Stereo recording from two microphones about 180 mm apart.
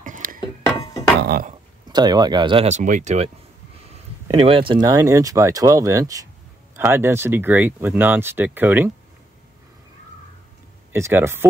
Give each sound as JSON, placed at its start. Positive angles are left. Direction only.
{"t": 0.0, "sound": "a sound", "side_deg": -50}
{"t": 1.9, "sound": "speech", "side_deg": -25}
{"t": 4.3, "sound": "speech", "side_deg": -30}
{"t": 10.9, "sound": "speech", "side_deg": -15}